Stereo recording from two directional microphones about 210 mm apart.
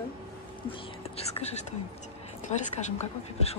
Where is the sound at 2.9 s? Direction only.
30° left (ahead or behind).